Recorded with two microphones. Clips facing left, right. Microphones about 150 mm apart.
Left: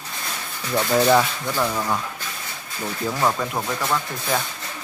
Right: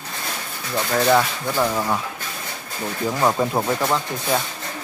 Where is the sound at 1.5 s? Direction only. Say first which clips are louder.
Right 4 dB; 10° right (ahead or behind).